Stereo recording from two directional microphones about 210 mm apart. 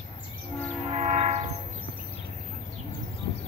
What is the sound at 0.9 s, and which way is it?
Train, 30° right (ahead or behind).